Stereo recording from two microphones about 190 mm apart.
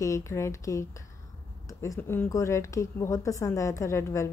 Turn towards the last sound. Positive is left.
turn(degrees=15)  # may be behind; listen again after turning